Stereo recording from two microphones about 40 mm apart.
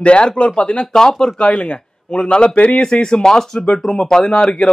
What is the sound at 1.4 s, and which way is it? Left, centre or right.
A man's voice, left.